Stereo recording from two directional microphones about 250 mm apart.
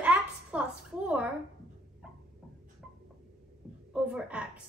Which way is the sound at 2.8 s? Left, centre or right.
Centre.